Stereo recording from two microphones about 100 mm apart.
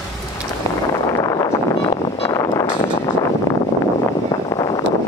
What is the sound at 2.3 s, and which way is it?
Vehicle, 40° left (ahead or behind).